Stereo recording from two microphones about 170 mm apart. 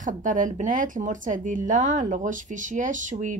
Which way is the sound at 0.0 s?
50° right (ahead or behind).